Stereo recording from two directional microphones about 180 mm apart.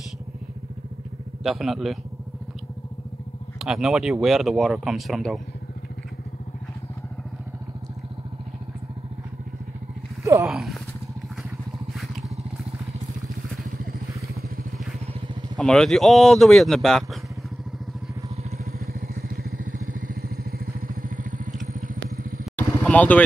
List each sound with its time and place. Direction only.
1.4 s speech: centre (ahead or behind)
3.5 s speech: centre (ahead or behind)
10.4 s speech: centre (ahead or behind)
15.5 s speech: 5° left (ahead or behind)
18.7 s vehicle: 55° right (ahead or behind)
22.4 s vehicle: 5° left (ahead or behind)